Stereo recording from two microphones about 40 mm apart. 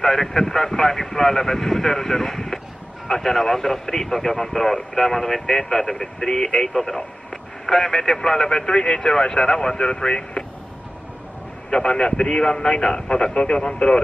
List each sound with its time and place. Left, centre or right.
0.0 s speech: centre
11.7 s speech: centre